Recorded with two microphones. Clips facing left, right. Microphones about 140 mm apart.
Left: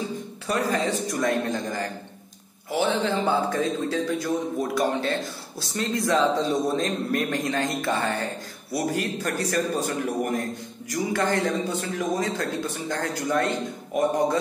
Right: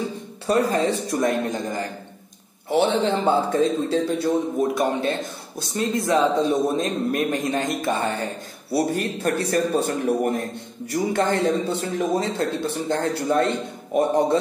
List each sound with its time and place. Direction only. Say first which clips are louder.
0.5 s a man's voice: right 5 dB; 30° right (ahead or behind)